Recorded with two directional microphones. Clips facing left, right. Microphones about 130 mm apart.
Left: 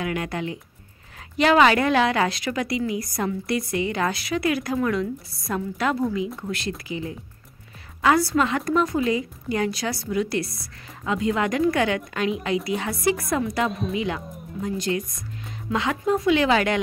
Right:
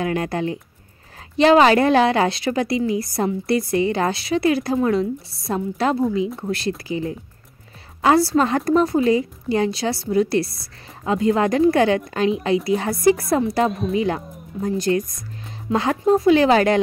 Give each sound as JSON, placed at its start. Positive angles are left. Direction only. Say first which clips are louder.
{"t": 0.0, "sound": "a woman's voice", "louder": "right 5 dB", "side_deg": -35}
{"t": 13.7, "sound": "speech", "louder": "right 4 dB", "side_deg": 0}
{"t": 13.9, "sound": "a woman's voice", "louder": "right 5 dB", "side_deg": -40}